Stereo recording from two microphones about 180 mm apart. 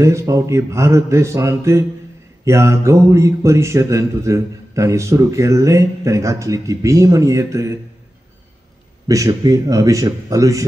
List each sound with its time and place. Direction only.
0.0 s speech: 15° right (ahead or behind)
9.0 s a man's voice: 20° right (ahead or behind)